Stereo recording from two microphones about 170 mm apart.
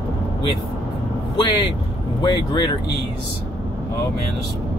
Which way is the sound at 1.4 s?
25° left (ahead or behind).